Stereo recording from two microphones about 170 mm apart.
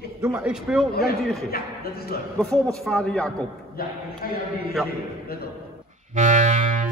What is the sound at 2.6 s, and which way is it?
Speech, centre (ahead or behind).